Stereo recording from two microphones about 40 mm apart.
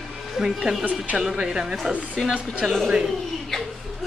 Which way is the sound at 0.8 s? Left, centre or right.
Right.